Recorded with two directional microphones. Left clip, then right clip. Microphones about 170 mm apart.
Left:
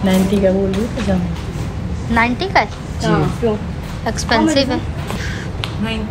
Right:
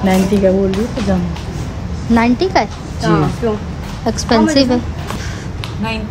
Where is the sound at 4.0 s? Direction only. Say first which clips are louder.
Right 2 dB; 35° right (ahead or behind).